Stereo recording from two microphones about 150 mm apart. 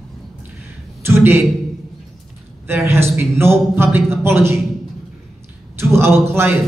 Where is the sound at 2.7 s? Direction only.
15° right (ahead or behind).